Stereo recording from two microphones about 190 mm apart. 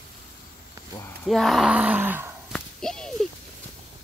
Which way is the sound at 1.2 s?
Centre (ahead or behind).